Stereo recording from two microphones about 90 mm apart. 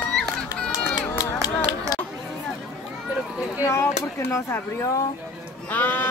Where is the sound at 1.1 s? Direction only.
45° left (ahead or behind).